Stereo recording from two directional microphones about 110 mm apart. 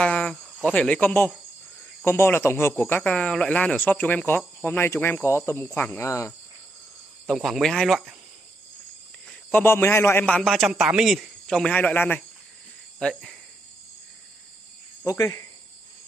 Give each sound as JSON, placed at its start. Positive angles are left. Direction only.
{"t": 0.0, "sound": "cricket", "side_deg": 10}
{"t": 2.0, "sound": "speech", "side_deg": 20}
{"t": 4.6, "sound": "speech", "side_deg": 20}
{"t": 7.2, "sound": "a man's voice", "side_deg": 0}
{"t": 9.5, "sound": "speech", "side_deg": 20}
{"t": 10.2, "sound": "speech", "side_deg": 10}
{"t": 10.5, "sound": "a man's voice", "side_deg": -5}
{"t": 13.0, "sound": "a man's voice", "side_deg": 5}
{"t": 15.0, "sound": "speech", "side_deg": 30}